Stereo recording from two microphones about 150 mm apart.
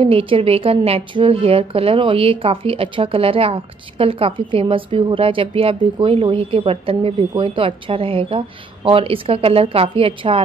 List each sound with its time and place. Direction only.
0.0 s a woman's voice: 35° right (ahead or behind)